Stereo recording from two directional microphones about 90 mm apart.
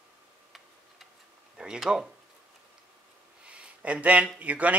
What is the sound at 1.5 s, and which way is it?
Speech, 10° right (ahead or behind).